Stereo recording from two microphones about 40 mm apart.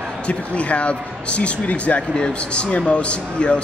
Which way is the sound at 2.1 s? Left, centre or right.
Left.